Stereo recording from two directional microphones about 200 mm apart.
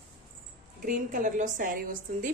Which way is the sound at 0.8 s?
40° right (ahead or behind).